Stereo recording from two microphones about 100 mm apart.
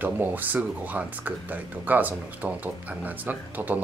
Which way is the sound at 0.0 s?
20° right (ahead or behind).